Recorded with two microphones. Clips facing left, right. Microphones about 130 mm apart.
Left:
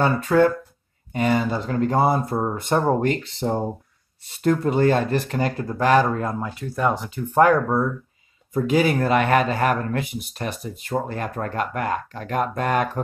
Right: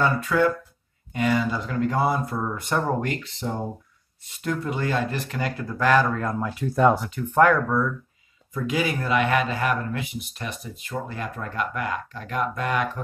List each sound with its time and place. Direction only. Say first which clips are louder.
0.0 s speech: left 4 dB; 35° left (ahead or behind)
6.6 s speech: right 3 dB; 5° right (ahead or behind)
7.4 s speech: left 3 dB; 30° left (ahead or behind)